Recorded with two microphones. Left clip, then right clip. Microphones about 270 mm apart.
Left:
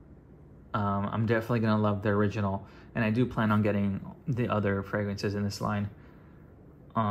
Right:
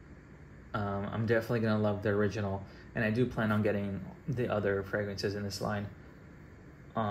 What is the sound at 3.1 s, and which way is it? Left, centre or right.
Speech, centre.